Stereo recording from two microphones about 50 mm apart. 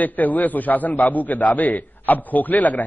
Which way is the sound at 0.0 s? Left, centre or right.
Left.